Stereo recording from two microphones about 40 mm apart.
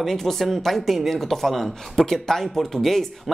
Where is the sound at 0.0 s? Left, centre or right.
Centre.